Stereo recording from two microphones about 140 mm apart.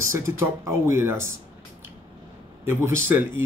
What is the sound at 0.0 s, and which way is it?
Speech, 20° right (ahead or behind).